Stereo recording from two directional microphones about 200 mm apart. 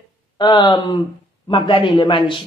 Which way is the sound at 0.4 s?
20° left (ahead or behind).